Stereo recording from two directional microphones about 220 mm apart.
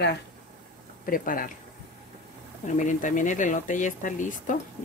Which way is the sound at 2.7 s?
35° left (ahead or behind).